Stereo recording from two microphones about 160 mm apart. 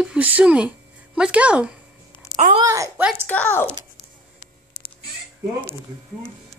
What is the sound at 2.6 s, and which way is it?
Speech, 20° right (ahead or behind).